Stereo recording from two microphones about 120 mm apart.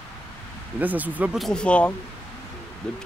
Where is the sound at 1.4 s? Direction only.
5° left (ahead or behind).